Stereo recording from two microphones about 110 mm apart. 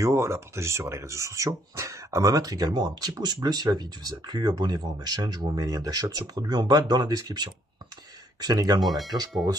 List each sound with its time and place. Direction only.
0.0 s speech: 25° right (ahead or behind)
8.8 s speech: centre (ahead or behind)